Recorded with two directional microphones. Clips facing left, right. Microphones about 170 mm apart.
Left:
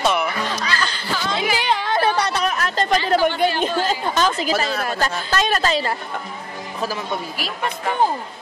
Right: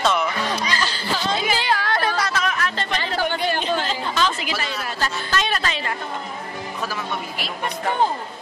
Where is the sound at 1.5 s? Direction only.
20° left (ahead or behind).